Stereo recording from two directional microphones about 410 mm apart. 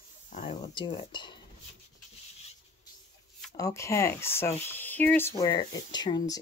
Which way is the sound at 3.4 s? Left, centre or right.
Centre.